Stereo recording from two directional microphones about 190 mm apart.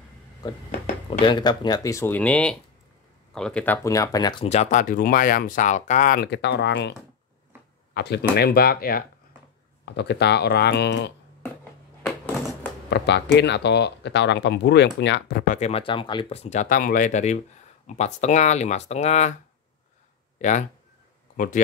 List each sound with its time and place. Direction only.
1.2 s speech: 25° left (ahead or behind); by 9.0 s 50° left (ahead or behind)
9.8 s speech: 65° left (ahead or behind)
12.9 s speech: 65° left (ahead or behind); by 19.3 s 35° left (ahead or behind)
20.3 s speech: 40° left (ahead or behind)